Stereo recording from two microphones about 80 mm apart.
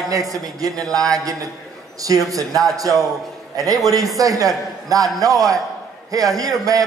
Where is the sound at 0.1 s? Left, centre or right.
Right.